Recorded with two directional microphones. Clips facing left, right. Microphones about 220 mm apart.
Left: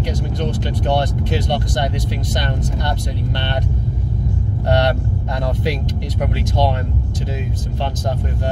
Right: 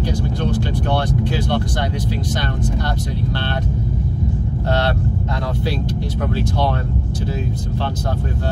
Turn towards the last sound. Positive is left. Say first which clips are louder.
# left 1 dB
turn(degrees=20)  # may be behind; listen again after turning